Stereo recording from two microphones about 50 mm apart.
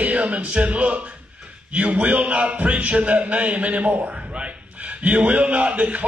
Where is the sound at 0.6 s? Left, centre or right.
Right.